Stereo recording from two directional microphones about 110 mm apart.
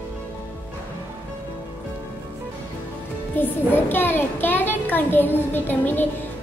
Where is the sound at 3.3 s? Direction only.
20° left (ahead or behind).